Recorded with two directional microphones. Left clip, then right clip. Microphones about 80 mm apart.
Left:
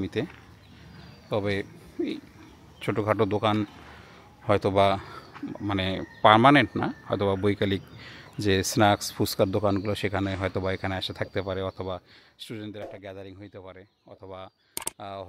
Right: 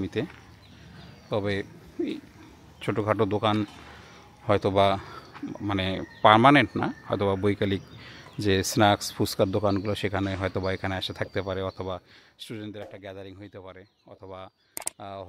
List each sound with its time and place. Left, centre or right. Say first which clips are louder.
0.0 s speech: even; centre
1.3 s speech: even; centre